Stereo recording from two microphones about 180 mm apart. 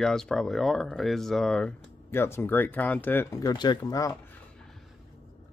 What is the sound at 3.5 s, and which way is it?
Speech, 25° left (ahead or behind).